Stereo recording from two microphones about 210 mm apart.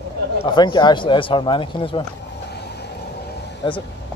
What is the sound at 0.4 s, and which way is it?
Speech, 20° left (ahead or behind).